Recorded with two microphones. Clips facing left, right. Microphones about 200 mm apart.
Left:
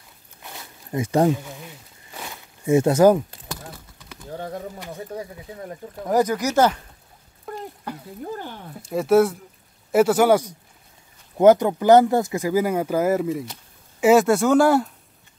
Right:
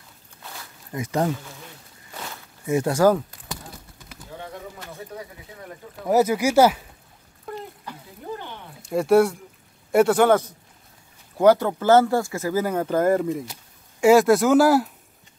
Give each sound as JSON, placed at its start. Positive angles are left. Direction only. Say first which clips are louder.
{"t": 0.4, "sound": "a sound", "louder": "left 1 dB", "side_deg": 20}
{"t": 2.1, "sound": "walk", "louder": "even", "side_deg": 10}
{"t": 2.6, "sound": "speech", "louder": "left 4 dB", "side_deg": 25}
{"t": 4.7, "sound": "a sound", "louder": "left 4 dB", "side_deg": 15}
{"t": 5.1, "sound": "speech", "louder": "left 5 dB", "side_deg": 35}
{"t": 6.0, "sound": "speech", "louder": "right 1 dB", "side_deg": -10}
{"t": 8.8, "sound": "speech", "louder": "even", "side_deg": 0}